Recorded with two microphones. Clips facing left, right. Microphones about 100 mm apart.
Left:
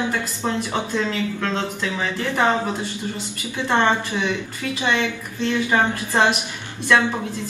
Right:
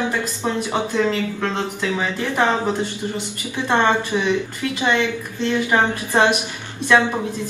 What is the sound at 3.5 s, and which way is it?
Speech, 15° right (ahead or behind).